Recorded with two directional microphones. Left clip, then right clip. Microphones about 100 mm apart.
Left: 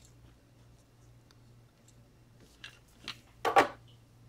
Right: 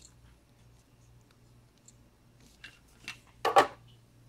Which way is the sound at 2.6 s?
45° left (ahead or behind).